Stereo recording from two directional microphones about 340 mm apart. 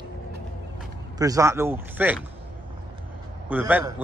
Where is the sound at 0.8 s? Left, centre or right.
Centre.